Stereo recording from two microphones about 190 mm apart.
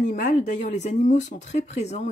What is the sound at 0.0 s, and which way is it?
Speech, 40° left (ahead or behind).